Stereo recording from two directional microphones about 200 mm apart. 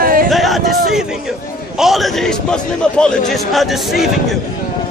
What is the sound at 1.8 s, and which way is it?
A man's voice, centre (ahead or behind).